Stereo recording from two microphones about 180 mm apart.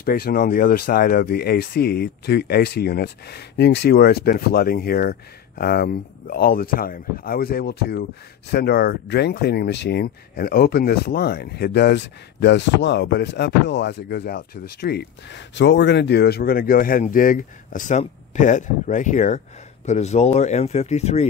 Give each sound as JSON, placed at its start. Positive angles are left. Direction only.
{"t": 0.0, "sound": "speech", "side_deg": 55}